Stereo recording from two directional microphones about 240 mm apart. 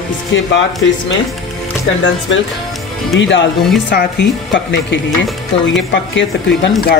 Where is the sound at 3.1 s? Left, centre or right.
Left.